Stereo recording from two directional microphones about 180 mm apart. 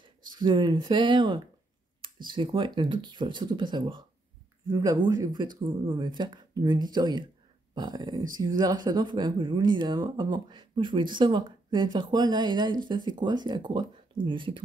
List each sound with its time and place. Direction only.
0.0 s speech: 25° right (ahead or behind)